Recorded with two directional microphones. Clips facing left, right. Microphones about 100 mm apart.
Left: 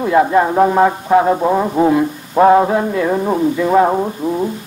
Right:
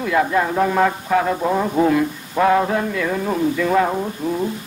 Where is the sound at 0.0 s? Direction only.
30° left (ahead or behind).